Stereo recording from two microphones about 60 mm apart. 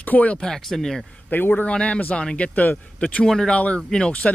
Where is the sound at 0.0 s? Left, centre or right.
Left.